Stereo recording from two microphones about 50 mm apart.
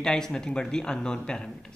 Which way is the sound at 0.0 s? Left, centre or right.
Centre.